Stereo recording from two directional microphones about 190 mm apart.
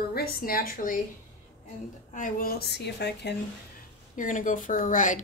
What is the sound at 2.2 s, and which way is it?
A woman's voice, 45° left (ahead or behind).